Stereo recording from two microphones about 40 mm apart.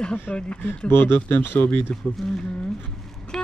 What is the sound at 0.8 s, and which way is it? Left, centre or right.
Speech, left.